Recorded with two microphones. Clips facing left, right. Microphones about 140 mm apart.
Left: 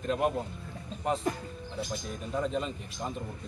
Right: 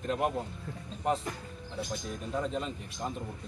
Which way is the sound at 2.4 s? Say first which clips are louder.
Left 3 dB; centre (ahead or behind).